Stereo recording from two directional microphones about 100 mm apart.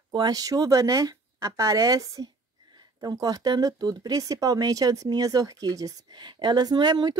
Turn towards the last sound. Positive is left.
turn(degrees=-45)  # may be behind; listen again after turning